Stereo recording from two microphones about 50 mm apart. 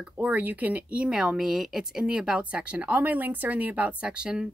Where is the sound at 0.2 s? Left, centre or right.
Right.